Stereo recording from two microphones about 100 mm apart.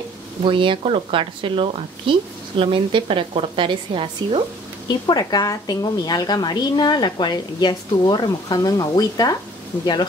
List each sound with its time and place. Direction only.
0.4 s speech: 55° right (ahead or behind)
4.8 s a woman's voice: 45° left (ahead or behind)